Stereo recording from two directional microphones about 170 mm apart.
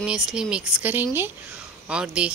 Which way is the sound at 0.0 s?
5° right (ahead or behind).